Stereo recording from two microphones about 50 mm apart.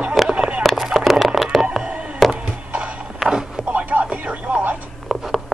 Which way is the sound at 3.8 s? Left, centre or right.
Right.